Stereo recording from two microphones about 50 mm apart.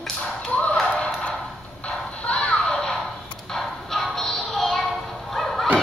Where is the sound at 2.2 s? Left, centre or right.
Centre.